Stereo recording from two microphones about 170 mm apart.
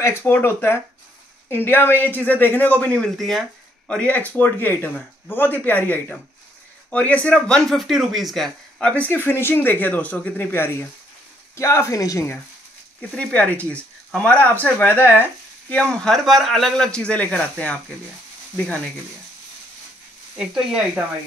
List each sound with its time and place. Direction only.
0.0 s speech: 15° left (ahead or behind)
13.1 s speech: 5° left (ahead or behind)
20.3 s speech: 5° right (ahead or behind)